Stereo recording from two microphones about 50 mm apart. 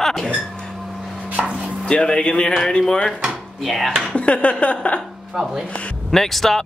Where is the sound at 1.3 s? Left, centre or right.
Centre.